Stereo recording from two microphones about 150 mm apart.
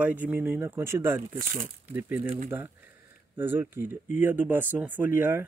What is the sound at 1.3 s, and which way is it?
Speech, 65° right (ahead or behind).